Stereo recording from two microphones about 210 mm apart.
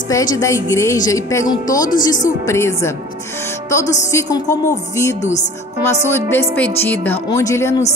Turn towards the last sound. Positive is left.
turn(degrees=15)  # may be behind; listen again after turning